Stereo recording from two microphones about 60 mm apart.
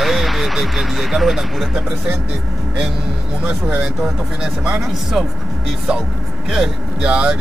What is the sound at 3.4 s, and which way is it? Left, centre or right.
Speech, right.